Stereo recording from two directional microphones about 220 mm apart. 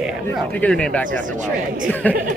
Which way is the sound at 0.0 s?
5° left (ahead or behind).